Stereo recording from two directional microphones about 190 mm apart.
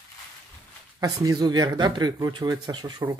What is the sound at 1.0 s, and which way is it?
Speech, 20° right (ahead or behind).